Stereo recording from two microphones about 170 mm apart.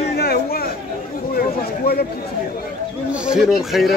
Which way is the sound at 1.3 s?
65° left (ahead or behind).